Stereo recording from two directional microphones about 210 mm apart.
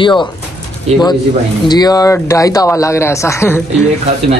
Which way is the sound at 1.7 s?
20° left (ahead or behind).